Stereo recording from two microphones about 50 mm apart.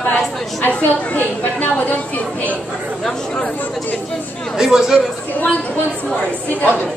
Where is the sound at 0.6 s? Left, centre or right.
Left.